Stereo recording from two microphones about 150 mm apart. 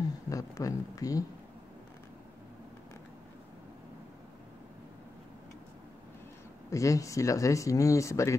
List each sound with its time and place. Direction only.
0.3 s speech: 20° left (ahead or behind)
6.7 s speech: 20° left (ahead or behind)